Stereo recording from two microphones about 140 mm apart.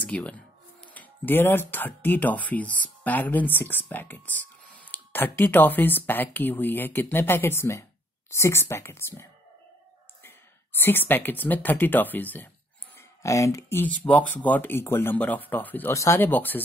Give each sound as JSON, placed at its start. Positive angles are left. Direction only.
{"t": 0.0, "sound": "speech", "side_deg": 10}
{"t": 10.8, "sound": "speech", "side_deg": 15}